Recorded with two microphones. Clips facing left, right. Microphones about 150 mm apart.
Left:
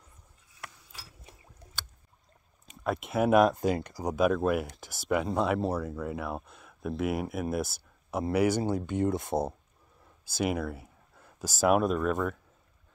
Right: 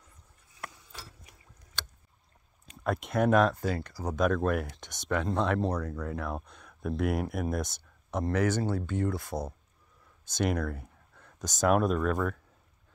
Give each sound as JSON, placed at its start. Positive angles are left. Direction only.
{"t": 1.3, "sound": "a sound", "side_deg": 30}
{"t": 2.6, "sound": "speech", "side_deg": 0}
{"t": 10.2, "sound": "speech", "side_deg": 5}